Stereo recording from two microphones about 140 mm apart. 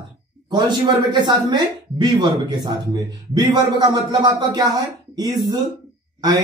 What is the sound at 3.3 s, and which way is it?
Speech, 30° right (ahead or behind).